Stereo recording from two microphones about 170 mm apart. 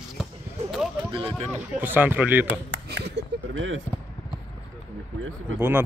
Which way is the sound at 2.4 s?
90° right.